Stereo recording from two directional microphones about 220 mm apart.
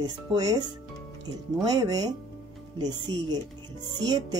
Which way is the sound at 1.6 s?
20° right (ahead or behind).